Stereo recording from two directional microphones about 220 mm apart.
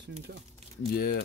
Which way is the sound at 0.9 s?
45° left (ahead or behind).